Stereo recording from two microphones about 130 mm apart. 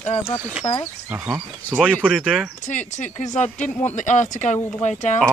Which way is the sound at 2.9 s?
65° left (ahead or behind).